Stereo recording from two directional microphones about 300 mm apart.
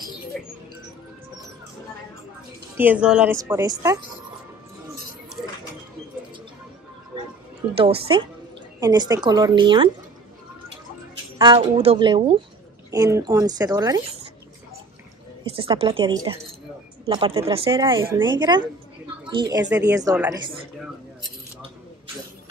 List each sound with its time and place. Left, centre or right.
0.3 s music: centre
2.8 s speech: centre
7.7 s speech: centre
11.3 s speech: centre
15.4 s a woman's voice: centre